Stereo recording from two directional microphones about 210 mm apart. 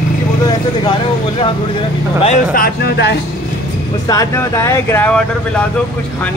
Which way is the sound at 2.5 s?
45° left (ahead or behind).